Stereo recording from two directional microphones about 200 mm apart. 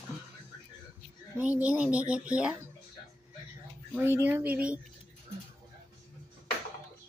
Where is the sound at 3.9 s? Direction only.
10° right (ahead or behind).